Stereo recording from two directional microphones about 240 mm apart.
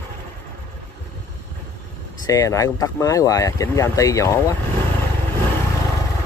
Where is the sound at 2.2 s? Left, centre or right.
Centre.